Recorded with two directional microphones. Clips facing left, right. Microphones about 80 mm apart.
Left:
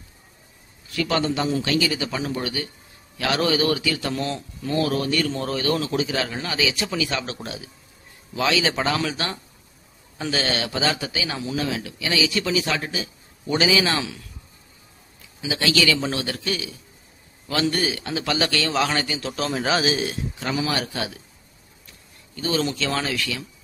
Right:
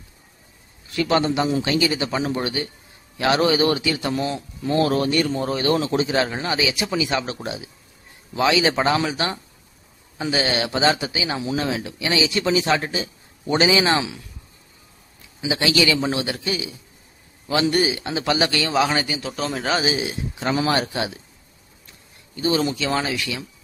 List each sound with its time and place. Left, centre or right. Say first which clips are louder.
0.9 s speech: right 3 dB; right
4.1 s a man's voice: right 3 dB; centre
4.6 s speech: right 3 dB; right
5.2 s a man's voice: right 2 dB; centre
5.6 s a man's voice: right 3 dB; right; by 10.6 s centre
10.6 s speech: right 4 dB; right
15.4 s a man's voice: right 2 dB; centre
20.5 s speech: right 4 dB; right
20.8 s speech: right 3 dB; right
22.3 s a man's voice: right 3 dB; centre